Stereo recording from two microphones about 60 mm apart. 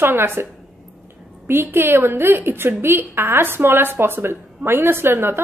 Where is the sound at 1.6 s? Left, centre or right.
Right.